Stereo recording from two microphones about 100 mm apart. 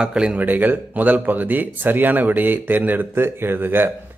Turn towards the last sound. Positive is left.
turn(degrees=-20)  # may be behind; listen again after turning